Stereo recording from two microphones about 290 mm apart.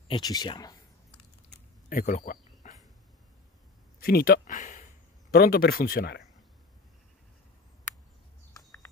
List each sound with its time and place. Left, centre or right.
0.1 s speech: centre
1.1 s a sound: left
4.0 s speech: left